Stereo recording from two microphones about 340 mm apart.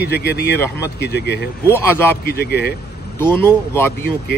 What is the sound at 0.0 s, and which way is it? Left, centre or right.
Speech, left.